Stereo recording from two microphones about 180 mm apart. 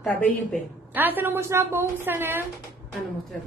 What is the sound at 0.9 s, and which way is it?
A woman's voice, 10° right (ahead or behind).